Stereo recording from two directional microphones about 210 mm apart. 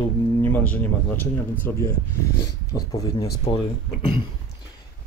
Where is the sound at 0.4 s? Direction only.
10° left (ahead or behind).